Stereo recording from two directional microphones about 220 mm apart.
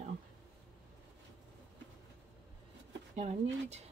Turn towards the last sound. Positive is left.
turn(degrees=-30)  # may be behind; listen again after turning